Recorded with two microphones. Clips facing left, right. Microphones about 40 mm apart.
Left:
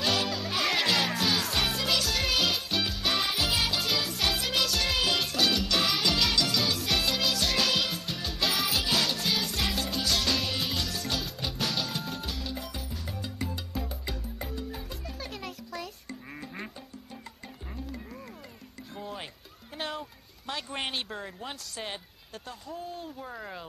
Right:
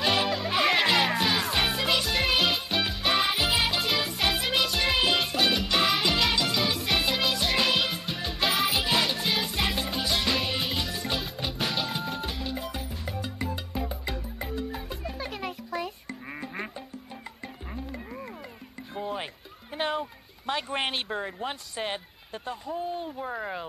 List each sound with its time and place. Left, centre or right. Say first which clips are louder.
0.0 s music: right 3 dB; right
17.7 s music: right 3 dB; right
19.8 s a sound: right 7 dB; right